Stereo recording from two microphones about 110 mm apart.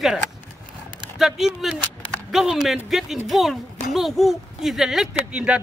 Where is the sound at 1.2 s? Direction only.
Centre (ahead or behind).